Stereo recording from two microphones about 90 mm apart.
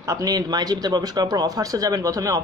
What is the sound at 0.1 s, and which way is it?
Speech, 45° right (ahead or behind).